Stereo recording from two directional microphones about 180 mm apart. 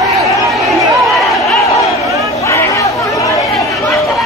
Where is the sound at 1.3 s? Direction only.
Centre (ahead or behind).